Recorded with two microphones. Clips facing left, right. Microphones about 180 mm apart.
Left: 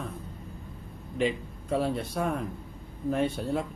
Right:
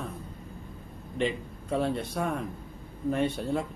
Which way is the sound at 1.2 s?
Centre (ahead or behind).